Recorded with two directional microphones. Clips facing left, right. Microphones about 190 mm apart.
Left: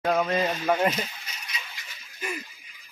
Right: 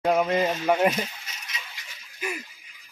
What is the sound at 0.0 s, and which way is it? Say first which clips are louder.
Speech: right 2 dB; 15° right (ahead or behind).